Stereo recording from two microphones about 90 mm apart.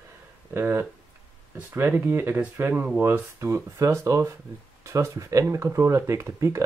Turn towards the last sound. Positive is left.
turn(degrees=-30)  # may be behind; listen again after turning